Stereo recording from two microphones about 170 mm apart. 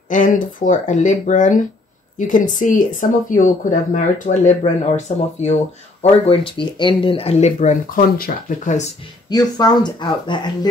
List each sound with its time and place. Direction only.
0.1 s speech: 50° left (ahead or behind)
9.3 s speech: 25° left (ahead or behind)